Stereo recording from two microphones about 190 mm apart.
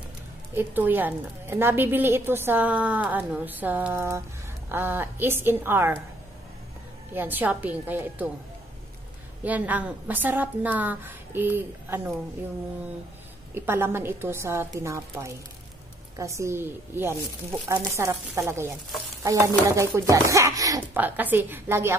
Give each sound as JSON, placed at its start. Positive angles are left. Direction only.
{"t": 0.6, "sound": "a woman's voice", "side_deg": -10}
{"t": 7.2, "sound": "a woman's voice", "side_deg": -10}
{"t": 9.4, "sound": "a woman's voice", "side_deg": -10}
{"t": 13.6, "sound": "a woman's voice", "side_deg": -10}